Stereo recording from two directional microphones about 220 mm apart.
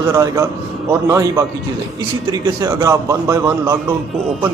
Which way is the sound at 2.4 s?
15° right (ahead or behind).